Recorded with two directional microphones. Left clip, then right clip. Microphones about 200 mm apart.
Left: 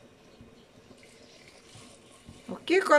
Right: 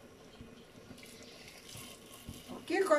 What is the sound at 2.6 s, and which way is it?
Speech, 60° left (ahead or behind).